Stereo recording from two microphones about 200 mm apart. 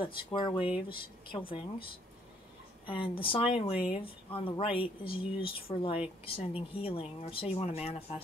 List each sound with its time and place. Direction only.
0.0 s speech: 25° left (ahead or behind)
2.9 s speech: 25° left (ahead or behind)